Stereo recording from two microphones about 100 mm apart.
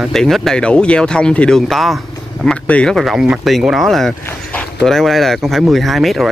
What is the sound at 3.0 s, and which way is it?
Speech, 5° right (ahead or behind).